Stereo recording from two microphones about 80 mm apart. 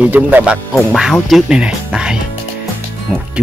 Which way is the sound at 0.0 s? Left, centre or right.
Right.